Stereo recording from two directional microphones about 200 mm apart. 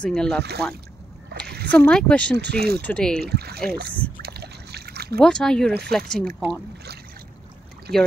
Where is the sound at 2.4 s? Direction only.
55° right (ahead or behind).